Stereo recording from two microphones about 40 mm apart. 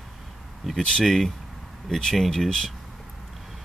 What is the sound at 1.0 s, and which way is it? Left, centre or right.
Speech, centre.